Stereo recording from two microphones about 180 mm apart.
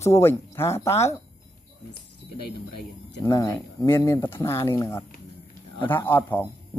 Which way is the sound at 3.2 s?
15° left (ahead or behind).